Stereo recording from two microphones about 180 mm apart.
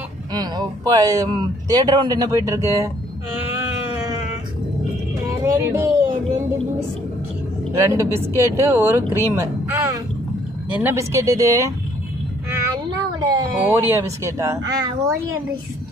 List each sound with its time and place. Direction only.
0.3 s a man's voice: 20° right (ahead or behind)
5.4 s music: 20° right (ahead or behind)
7.8 s speech: 15° right (ahead or behind)
12.7 s speech: 20° right (ahead or behind)